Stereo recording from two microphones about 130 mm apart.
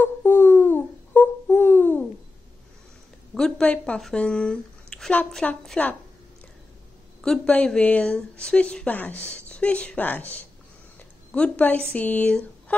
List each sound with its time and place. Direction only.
0.0 s a sound: 15° left (ahead or behind)
3.3 s speech: 5° left (ahead or behind)
7.2 s speech: 5° left (ahead or behind)